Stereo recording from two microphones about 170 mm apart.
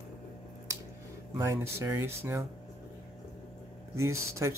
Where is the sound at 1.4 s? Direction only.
15° right (ahead or behind).